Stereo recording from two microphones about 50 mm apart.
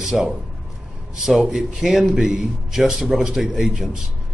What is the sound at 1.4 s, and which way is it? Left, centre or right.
Speech, centre.